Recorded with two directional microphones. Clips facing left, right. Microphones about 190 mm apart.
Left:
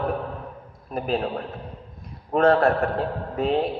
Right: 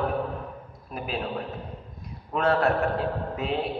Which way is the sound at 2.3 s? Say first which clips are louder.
Left 6 dB; 50° left (ahead or behind).